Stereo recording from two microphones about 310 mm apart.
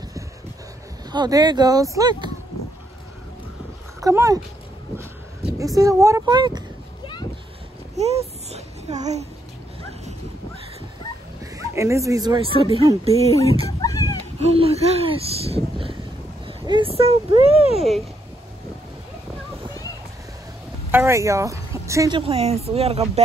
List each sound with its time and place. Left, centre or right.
1.1 s speech: centre
4.0 s speech: centre
7.9 s babbling: centre
11.5 s speech: centre
13.7 s cat: centre
14.4 s speech: centre
20.9 s speech: centre